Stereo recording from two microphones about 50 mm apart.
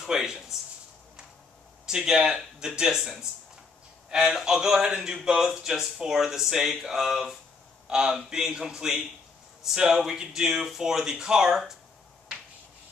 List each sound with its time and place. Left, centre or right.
0.0 s speech: centre
1.9 s speech: centre